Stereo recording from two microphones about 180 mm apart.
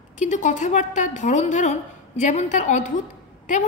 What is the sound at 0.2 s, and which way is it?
A woman's voice, 45° left (ahead or behind).